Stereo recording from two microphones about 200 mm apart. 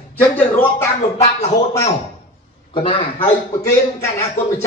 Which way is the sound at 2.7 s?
25° left (ahead or behind).